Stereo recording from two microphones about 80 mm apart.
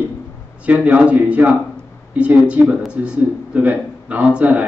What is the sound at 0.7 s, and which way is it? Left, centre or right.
A man's voice, centre.